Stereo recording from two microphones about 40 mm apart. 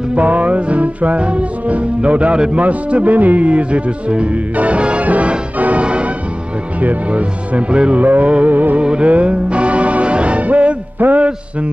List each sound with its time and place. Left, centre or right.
0.1 s music: right
3.4 s music: right
8.0 s music: right
8.8 s music: right
11.0 s music: right